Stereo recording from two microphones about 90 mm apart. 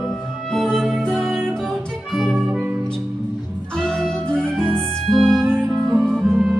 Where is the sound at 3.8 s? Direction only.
5° left (ahead or behind).